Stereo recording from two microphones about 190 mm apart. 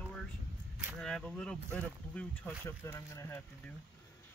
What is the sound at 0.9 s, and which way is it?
Speech, 5° left (ahead or behind).